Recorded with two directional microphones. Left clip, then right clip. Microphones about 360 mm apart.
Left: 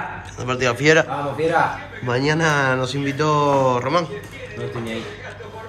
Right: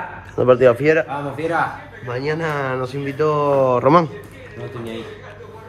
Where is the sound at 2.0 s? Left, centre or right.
Centre.